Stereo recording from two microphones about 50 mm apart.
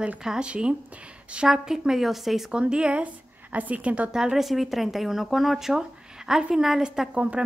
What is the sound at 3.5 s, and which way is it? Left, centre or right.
Speech, right.